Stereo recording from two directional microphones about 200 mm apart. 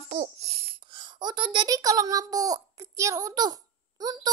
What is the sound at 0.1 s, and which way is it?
A child's voice, 35° right (ahead or behind).